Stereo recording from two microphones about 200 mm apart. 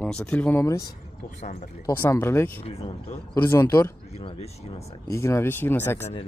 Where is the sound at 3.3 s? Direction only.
10° left (ahead or behind).